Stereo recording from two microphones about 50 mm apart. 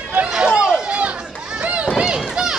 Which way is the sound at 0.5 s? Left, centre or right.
Centre.